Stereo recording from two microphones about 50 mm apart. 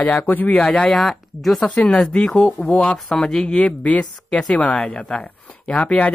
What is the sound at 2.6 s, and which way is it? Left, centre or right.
Speech, left.